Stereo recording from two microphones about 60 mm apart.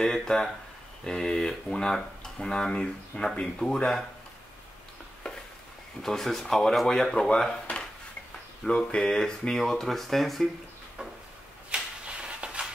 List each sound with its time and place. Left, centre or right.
0.0 s speech: centre
5.2 s stir: centre
6.0 s speech: centre
8.6 s speech: centre
11.7 s a sound: centre